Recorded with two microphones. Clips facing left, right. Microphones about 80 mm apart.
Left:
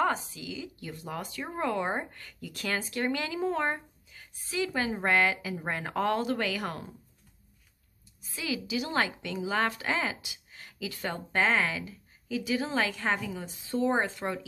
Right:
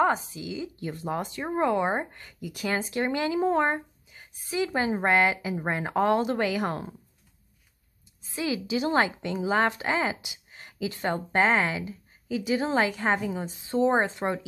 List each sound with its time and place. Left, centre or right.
0.0 s speech: right
8.2 s speech: right